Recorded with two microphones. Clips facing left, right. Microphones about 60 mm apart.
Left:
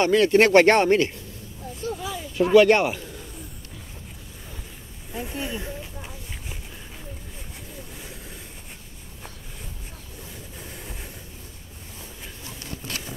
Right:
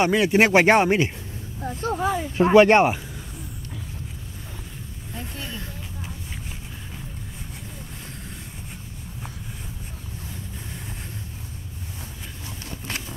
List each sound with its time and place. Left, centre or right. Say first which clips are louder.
0.0 s speech: left 1 dB; centre
1.6 s a sound: right 6 dB; right
2.3 s speech: right 1 dB; right
5.1 s speech: left 5 dB; centre